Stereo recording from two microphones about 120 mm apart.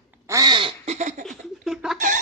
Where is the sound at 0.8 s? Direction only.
85° right.